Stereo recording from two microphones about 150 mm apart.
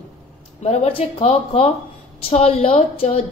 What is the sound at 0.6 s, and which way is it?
A woman's voice, 45° left (ahead or behind).